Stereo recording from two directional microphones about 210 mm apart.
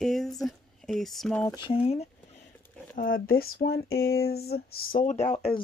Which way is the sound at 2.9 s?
40° left (ahead or behind).